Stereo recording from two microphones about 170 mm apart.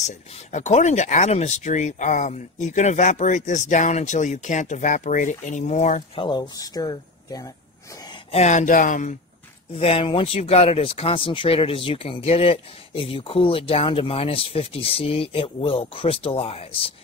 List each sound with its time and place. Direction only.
0.0 s speech: 45° left (ahead or behind)
6.1 s speech: 30° left (ahead or behind)
8.3 s speech: 40° left (ahead or behind)
9.8 s speech: 35° left (ahead or behind)